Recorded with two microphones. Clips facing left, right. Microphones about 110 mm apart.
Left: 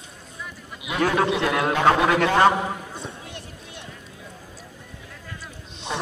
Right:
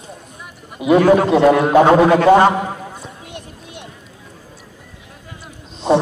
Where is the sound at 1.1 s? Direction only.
40° right (ahead or behind).